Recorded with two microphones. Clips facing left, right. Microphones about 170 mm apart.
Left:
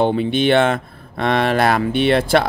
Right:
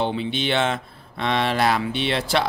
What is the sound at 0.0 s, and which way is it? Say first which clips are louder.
Speech: left 8 dB; 50° left (ahead or behind).